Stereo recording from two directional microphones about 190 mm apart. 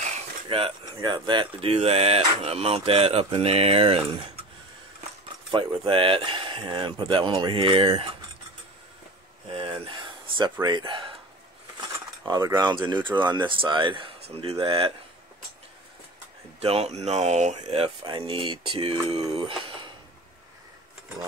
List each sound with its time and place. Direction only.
0.0 s speech: 30° right (ahead or behind)
5.5 s speech: 25° right (ahead or behind)
9.5 s a sound: 30° right (ahead or behind)
12.3 s speech: 20° right (ahead or behind)
16.5 s speech: 35° right (ahead or behind)